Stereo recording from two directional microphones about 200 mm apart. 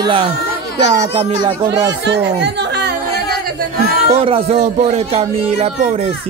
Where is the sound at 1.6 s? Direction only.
20° right (ahead or behind).